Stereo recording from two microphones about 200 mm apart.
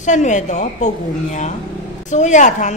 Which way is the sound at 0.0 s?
40° left (ahead or behind).